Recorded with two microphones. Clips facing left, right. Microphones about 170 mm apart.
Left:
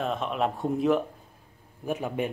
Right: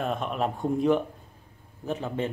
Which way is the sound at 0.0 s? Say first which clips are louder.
Even; centre (ahead or behind).